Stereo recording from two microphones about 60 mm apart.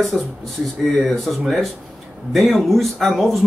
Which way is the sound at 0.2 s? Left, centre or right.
Centre.